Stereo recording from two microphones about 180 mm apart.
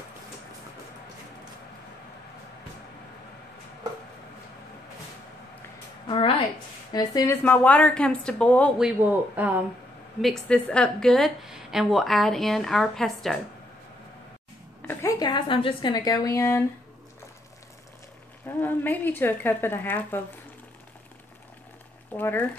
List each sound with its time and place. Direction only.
6.0 s a sound: 30° left (ahead or behind)
6.9 s a woman's voice: 20° left (ahead or behind)
7.4 s a woman's voice: 10° left (ahead or behind)
8.7 s a man's voice: 5° right (ahead or behind)
10.2 s a woman's voice: 5° left (ahead or behind)
14.9 s a woman's voice: 15° left (ahead or behind)
18.6 s a woman's voice: 10° left (ahead or behind)
22.1 s a woman's voice: 10° left (ahead or behind)